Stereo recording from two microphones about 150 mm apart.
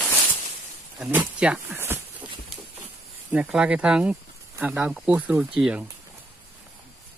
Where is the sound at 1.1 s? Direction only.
10° right (ahead or behind).